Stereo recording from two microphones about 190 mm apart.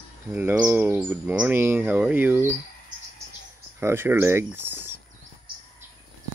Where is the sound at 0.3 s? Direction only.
10° right (ahead or behind).